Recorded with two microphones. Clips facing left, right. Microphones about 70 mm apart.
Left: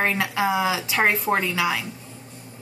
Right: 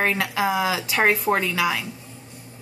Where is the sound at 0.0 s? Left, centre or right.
Centre.